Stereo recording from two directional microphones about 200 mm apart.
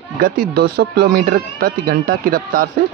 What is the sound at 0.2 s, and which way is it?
Speech, 50° right (ahead or behind).